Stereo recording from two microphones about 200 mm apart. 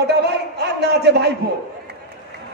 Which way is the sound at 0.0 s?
55° right (ahead or behind).